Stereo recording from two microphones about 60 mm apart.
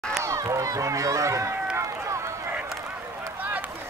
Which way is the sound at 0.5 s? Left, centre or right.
Right.